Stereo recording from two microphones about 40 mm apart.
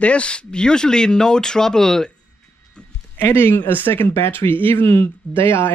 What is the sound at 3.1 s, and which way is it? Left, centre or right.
Speech, left.